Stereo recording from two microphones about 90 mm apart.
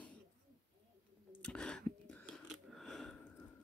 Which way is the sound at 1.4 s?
10° left (ahead or behind).